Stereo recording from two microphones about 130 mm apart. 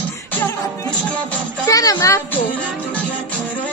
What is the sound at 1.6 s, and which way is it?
Music, 25° left (ahead or behind).